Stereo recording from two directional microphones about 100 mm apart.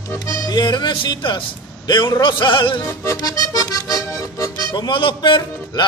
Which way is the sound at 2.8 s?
30° left (ahead or behind).